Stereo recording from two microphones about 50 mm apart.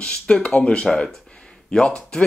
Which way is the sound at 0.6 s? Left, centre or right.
Left.